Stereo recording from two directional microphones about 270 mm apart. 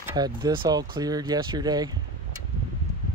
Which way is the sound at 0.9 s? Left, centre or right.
Centre.